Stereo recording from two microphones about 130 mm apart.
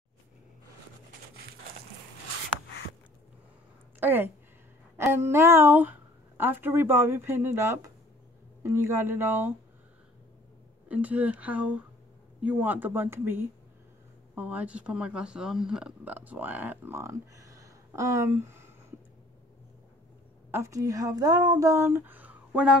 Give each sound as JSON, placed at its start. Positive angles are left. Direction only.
{"t": 4.0, "sound": "a sound", "side_deg": -15}
{"t": 4.9, "sound": "speech", "side_deg": -20}
{"t": 10.9, "sound": "speech", "side_deg": -10}
{"t": 20.5, "sound": "speech", "side_deg": -20}